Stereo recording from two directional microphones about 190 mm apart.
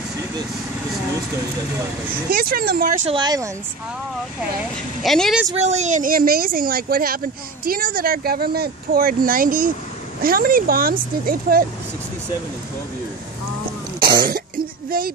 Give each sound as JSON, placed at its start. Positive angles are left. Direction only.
{"t": 2.2, "sound": "speech", "side_deg": -50}
{"t": 3.1, "sound": "speech", "side_deg": -20}
{"t": 5.0, "sound": "a woman's voice", "side_deg": 0}
{"t": 5.6, "sound": "speech", "side_deg": -35}
{"t": 14.0, "sound": "speech", "side_deg": -50}